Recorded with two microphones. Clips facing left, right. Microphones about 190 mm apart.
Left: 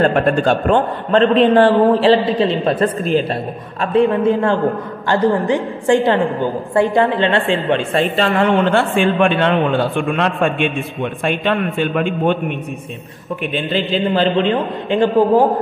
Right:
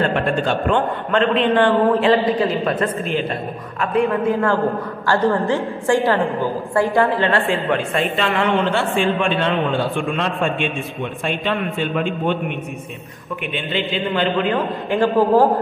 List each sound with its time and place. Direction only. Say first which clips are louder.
0.0 s a man's voice: left 5 dB; 45° left (ahead or behind); by 8.0 s 25° left (ahead or behind)
8.0 s a man's voice: left 4 dB; 40° left (ahead or behind)
8.7 s a man's voice: left 4 dB; 60° left (ahead or behind)
13.7 s a man's voice: left 4 dB; 35° left (ahead or behind)
14.5 s a woman's voice: left 2 dB; 20° left (ahead or behind)